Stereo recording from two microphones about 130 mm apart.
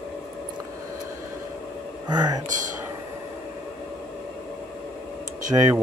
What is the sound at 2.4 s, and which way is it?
Speech, 75° right (ahead or behind).